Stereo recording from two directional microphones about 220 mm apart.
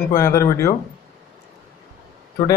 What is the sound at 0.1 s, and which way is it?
Speech, 15° left (ahead or behind).